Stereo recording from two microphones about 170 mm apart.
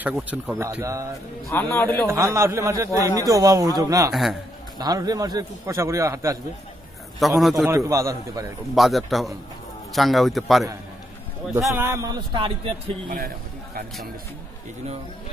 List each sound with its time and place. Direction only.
0.0 s speech: 10° right (ahead or behind)
1.5 s a man's voice: 15° left (ahead or behind)
2.0 s a man's voice: 15° right (ahead or behind)
4.1 s a man's voice: centre (ahead or behind)
4.7 s a man's voice: 20° right (ahead or behind)
7.2 s a man's voice: centre (ahead or behind)
7.6 s a man's voice: 20° right (ahead or behind)
8.7 s a man's voice: centre (ahead or behind)
11.5 s a man's voice: 15° right (ahead or behind); by 12.9 s 30° right (ahead or behind)